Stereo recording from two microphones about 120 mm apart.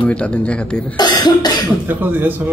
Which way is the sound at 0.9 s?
35° left (ahead or behind).